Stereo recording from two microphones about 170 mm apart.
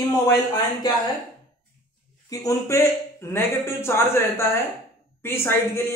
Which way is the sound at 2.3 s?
20° left (ahead or behind).